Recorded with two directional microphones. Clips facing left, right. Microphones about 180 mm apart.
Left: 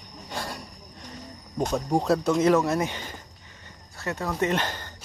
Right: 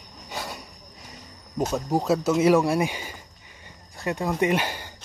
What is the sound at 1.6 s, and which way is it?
Speech, 5° right (ahead or behind).